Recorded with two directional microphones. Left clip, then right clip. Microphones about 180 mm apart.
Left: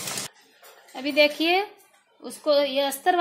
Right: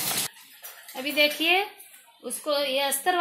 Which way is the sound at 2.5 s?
70° left (ahead or behind).